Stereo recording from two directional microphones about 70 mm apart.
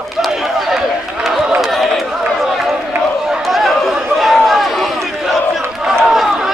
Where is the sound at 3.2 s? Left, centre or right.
Centre.